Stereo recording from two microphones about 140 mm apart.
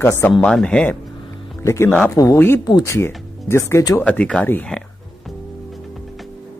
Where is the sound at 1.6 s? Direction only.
20° left (ahead or behind).